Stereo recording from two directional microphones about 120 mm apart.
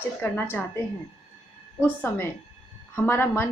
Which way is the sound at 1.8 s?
15° left (ahead or behind).